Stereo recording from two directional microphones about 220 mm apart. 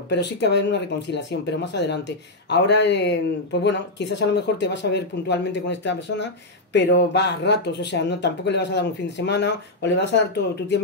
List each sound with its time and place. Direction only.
0.1 s speech: 50° left (ahead or behind)